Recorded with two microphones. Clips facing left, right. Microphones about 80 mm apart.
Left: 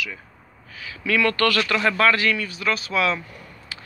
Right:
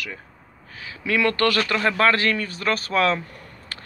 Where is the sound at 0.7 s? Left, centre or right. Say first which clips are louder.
Left 1 dB; right.